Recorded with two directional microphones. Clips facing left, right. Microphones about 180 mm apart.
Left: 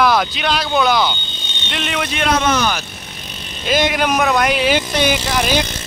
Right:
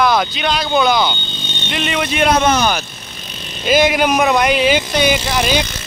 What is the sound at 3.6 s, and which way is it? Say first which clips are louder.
Speech: right 3 dB; 5° right (ahead or behind).